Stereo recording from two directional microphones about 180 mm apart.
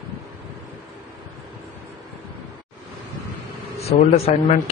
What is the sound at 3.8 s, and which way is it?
Speech, 40° left (ahead or behind).